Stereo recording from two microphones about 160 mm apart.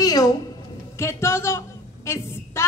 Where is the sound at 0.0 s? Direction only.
25° left (ahead or behind).